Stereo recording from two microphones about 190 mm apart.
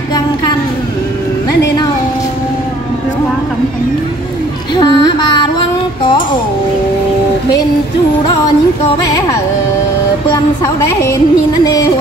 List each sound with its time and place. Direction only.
4.7 s music: 25° left (ahead or behind)